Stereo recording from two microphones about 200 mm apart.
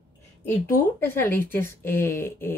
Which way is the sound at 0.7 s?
10° left (ahead or behind).